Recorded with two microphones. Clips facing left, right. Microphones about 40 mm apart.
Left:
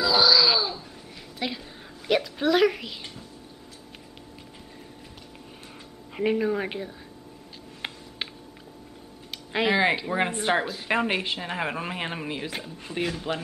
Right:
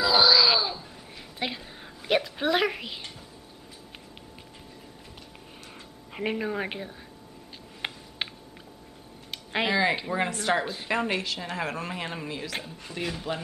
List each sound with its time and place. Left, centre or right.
0.0 s wail: centre
1.4 s a woman's voice: centre
6.1 s a woman's voice: centre
7.8 s a sound: centre
9.7 s speech: left